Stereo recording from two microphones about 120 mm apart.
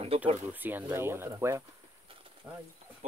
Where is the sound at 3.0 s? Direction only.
70° right (ahead or behind).